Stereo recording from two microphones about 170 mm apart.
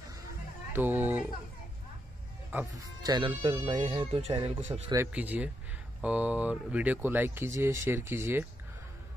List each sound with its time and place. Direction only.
0.7 s speech: 10° right (ahead or behind)
3.0 s speech: 25° right (ahead or behind)
4.9 s speech: 10° right (ahead or behind)